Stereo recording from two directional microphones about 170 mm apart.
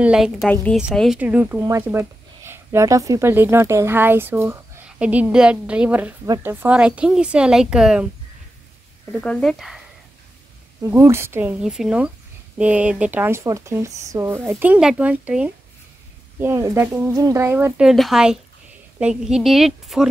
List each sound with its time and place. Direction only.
0.0 s speech: 5° right (ahead or behind)
9.2 s speech: 5° left (ahead or behind)
10.8 s speech: 15° right (ahead or behind)
11.6 s speech: 5° right (ahead or behind)
17.7 s speech: centre (ahead or behind)